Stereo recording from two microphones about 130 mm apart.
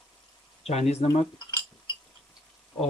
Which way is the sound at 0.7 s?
55° left (ahead or behind).